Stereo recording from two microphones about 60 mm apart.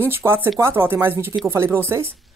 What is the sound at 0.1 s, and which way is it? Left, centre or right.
Speech, right.